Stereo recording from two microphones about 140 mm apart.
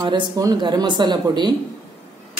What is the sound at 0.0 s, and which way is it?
Speech, 30° right (ahead or behind).